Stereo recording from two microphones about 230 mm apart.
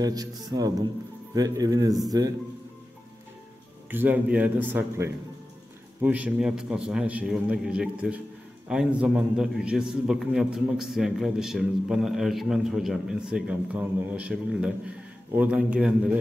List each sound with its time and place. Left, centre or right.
0.0 s a man's voice: centre
3.9 s a man's voice: centre